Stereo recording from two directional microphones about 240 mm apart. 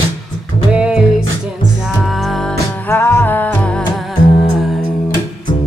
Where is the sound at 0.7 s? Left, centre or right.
Centre.